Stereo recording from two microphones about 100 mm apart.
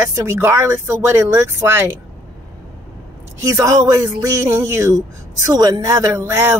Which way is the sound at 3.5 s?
30° right (ahead or behind).